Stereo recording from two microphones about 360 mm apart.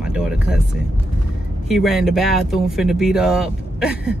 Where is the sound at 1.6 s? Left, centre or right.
Centre.